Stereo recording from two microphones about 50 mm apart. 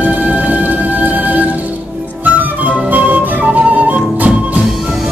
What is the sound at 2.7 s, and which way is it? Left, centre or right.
Flute, right.